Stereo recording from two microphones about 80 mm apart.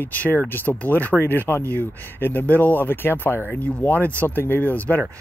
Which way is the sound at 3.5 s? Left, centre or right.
Centre.